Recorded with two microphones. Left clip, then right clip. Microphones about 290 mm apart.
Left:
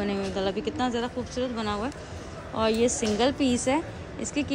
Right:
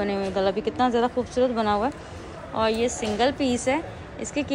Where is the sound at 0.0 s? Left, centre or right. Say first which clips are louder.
Right 4 dB; centre.